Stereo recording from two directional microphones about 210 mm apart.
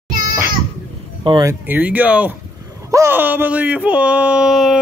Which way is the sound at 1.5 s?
10° right (ahead or behind).